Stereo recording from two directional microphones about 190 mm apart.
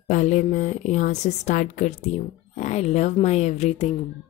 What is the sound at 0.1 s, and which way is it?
A woman's voice, 40° left (ahead or behind).